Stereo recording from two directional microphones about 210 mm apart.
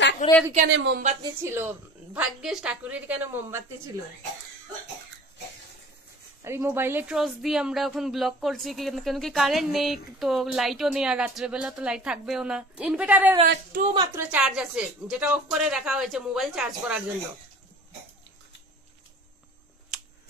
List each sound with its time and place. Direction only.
0.2 s a woman's voice: 35° left (ahead or behind)
0.7 s a woman's voice: 60° right (ahead or behind)
1.2 s a woman's voice: 10° right (ahead or behind)
6.4 s a woman's voice: 10° right (ahead or behind)
19.9 s a sound: centre (ahead or behind)